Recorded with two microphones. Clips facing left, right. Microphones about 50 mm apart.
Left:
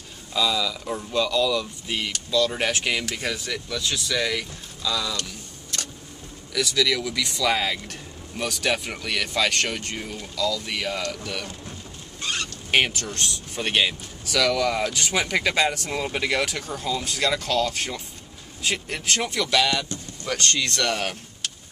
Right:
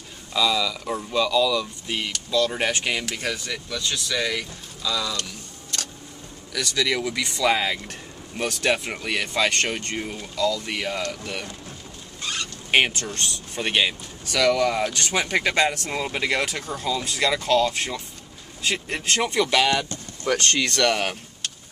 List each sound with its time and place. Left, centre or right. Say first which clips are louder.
0.3 s speech: right 1 dB; centre
6.5 s speech: left 3 dB; centre
6.8 s speech: right 1 dB; centre
8.9 s speech: right 1 dB; centre
10.0 s speech: right 2 dB; centre
12.7 s speech: right 1 dB; centre
13.1 s speech: even; centre
14.9 s speech: even; centre
15.2 s speech: right 2 dB; centre
17.5 s speech: right 4 dB; right
17.7 s speech: right 2 dB; centre
19.2 s speech: right 3 dB; right
20.9 s speech: right 2 dB; right